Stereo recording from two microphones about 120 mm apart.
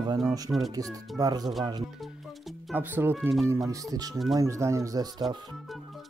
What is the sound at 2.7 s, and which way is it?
Speech, 15° right (ahead or behind).